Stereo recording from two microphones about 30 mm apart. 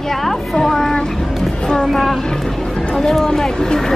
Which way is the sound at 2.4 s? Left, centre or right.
Centre.